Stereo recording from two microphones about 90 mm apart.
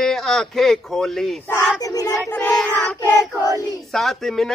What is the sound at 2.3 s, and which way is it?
Child singing, 20° left (ahead or behind).